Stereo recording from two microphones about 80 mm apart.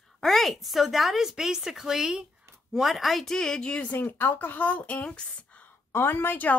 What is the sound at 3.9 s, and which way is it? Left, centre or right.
Speech, left.